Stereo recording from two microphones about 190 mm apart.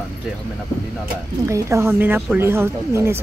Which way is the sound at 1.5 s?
15° right (ahead or behind).